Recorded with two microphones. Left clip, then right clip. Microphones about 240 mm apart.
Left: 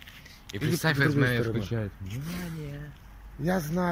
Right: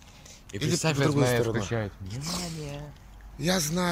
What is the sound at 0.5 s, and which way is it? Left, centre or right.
A man's voice, centre.